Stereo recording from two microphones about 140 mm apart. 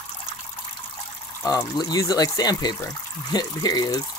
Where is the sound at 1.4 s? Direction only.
25° left (ahead or behind).